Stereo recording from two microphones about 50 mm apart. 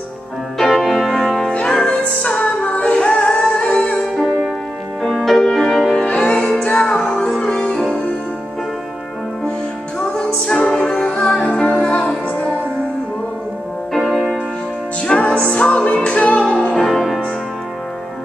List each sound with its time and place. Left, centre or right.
0.6 s music: centre
1.5 s music: left
5.0 s music: centre
6.0 s music: left
6.3 s music: centre
7.3 s music: left
9.9 s music: left
10.4 s music: centre; by 12.5 s left
13.9 s music: centre
15.0 s music: left
16.7 s music: centre